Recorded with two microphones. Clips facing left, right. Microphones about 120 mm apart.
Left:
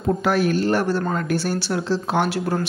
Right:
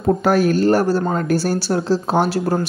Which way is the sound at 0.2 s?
40° right (ahead or behind).